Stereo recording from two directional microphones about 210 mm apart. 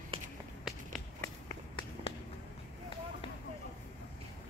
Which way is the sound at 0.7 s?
Centre (ahead or behind).